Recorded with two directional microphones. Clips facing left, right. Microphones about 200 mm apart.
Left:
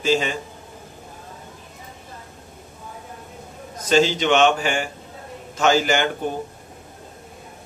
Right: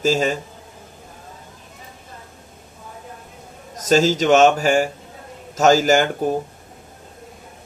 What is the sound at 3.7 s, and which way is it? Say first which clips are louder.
A man's voice: right 2 dB; 40° right (ahead or behind).